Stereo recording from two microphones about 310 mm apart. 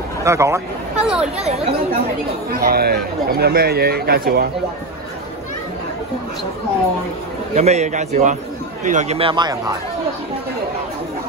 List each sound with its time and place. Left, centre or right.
0.2 s speech: centre
1.5 s speech: centre
2.6 s speech: right
7.5 s speech: right